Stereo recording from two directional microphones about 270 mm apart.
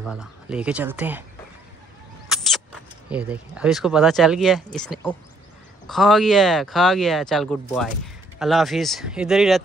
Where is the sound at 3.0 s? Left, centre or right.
Centre.